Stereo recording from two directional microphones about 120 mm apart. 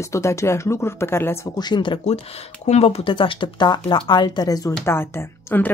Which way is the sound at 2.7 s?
60° left (ahead or behind).